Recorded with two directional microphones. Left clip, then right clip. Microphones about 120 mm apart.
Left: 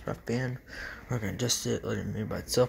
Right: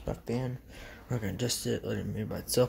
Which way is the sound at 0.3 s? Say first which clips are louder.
Left 2 dB; 15° left (ahead or behind).